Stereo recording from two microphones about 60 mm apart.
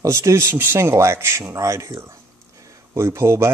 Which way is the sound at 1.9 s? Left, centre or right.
Right.